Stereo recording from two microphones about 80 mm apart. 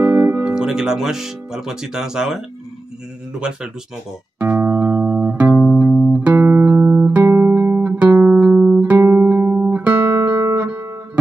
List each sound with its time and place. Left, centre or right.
0.0 s speech: right; by 3.7 s centre
4.4 s music: right
6.3 s music: right
8.9 s music: right